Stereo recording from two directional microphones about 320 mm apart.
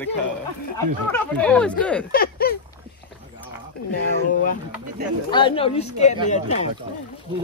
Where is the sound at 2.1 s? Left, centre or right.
Left.